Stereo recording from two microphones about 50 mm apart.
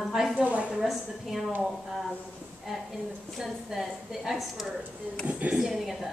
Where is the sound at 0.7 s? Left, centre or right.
Centre.